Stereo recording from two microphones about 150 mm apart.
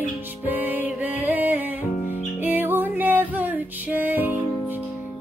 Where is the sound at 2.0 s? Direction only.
55° left (ahead or behind).